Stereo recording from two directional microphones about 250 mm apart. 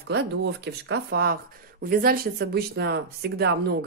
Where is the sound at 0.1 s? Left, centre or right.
Right.